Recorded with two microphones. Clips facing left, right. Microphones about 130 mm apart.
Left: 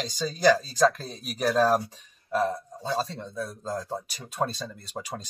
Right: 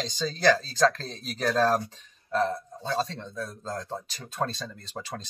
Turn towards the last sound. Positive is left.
turn(degrees=10)  # may be behind; listen again after turning